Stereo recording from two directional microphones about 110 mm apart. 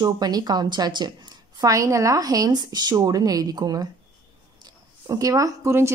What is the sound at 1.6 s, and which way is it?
Speech, 30° right (ahead or behind).